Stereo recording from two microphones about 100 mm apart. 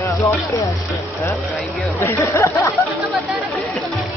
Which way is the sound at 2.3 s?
30° left (ahead or behind).